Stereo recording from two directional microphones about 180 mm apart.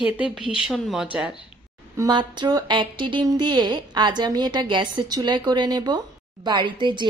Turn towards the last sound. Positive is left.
turn(degrees=-25)  # may be behind; listen again after turning